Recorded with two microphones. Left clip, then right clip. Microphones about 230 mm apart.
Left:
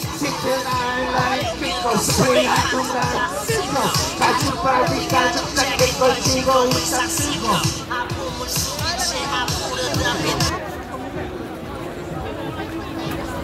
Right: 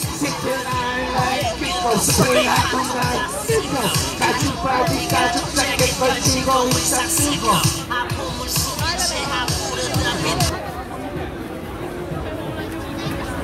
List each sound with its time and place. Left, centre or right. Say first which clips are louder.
0.2 s speech: left 2 dB; centre
8.5 s music: right 1 dB; right